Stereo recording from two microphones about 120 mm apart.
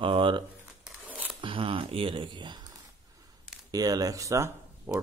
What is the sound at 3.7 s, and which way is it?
Speech, 30° right (ahead or behind).